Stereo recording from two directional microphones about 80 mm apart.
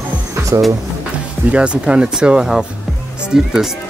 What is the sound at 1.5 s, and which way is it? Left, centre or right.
Speech, centre.